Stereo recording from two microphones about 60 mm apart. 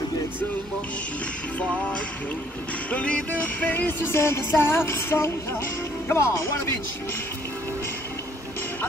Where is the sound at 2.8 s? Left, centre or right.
Left.